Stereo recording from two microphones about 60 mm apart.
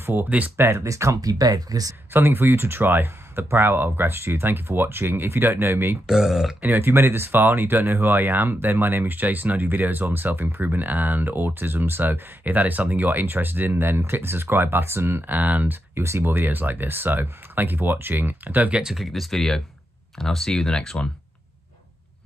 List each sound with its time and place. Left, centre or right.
0.0 s speech: right
0.6 s speech: right
2.1 s speech: right
6.0 s speech: centre
6.8 s speech: right
15.3 s speech: right
16.0 s speech: right
18.8 s speech: centre